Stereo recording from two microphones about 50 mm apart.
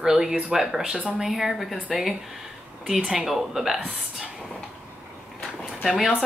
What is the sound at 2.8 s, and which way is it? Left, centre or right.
Speech, centre.